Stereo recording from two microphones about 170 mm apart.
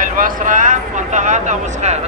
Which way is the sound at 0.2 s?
50° right (ahead or behind).